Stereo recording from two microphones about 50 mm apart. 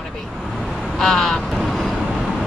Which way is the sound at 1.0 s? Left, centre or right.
Centre.